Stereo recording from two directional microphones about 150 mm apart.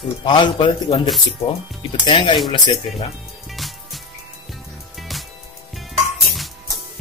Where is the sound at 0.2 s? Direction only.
30° left (ahead or behind).